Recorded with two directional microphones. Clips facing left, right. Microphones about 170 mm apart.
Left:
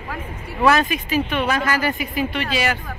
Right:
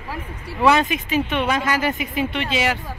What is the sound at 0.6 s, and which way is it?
Speech, 20° right (ahead or behind).